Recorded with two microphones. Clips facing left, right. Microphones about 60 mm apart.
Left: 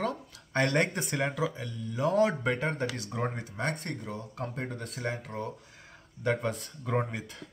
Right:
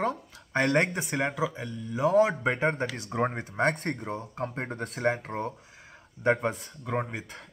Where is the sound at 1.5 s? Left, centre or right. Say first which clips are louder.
Right 3 dB; right.